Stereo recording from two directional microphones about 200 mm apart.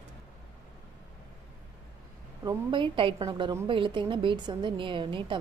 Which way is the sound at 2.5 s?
25° right (ahead or behind).